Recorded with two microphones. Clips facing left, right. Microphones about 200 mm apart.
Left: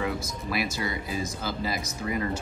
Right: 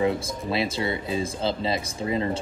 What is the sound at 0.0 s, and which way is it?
Speech, 25° right (ahead or behind).